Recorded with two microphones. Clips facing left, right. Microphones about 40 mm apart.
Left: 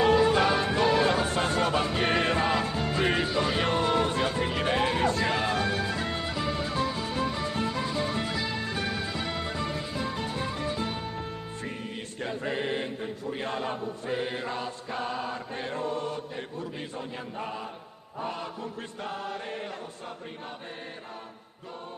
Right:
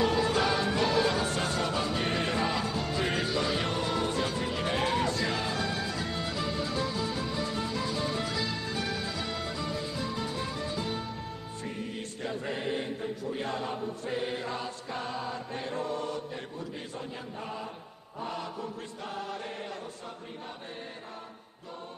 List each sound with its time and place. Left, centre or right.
0.0 s music: left
3.3 s speech: left
4.9 s music: left
6.2 s music: left
6.5 s music: left
8.3 s music: left
8.5 s music: left
15.1 s chant: left